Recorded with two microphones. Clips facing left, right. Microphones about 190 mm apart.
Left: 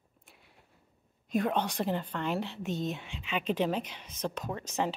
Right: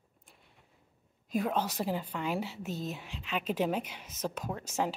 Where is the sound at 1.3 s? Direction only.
5° right (ahead or behind).